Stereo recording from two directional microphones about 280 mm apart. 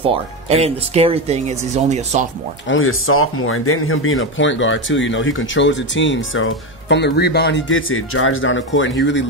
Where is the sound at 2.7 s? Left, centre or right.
Left.